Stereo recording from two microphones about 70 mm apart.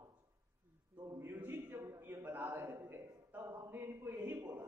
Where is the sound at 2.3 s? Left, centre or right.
Right.